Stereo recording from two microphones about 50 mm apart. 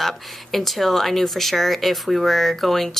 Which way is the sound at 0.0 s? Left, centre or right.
Centre.